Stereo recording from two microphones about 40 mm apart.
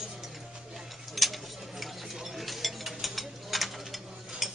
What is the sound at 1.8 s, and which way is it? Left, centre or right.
Ratchet, centre.